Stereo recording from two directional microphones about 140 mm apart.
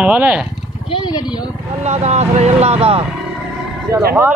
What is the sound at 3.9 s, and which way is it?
Speech, 90° right.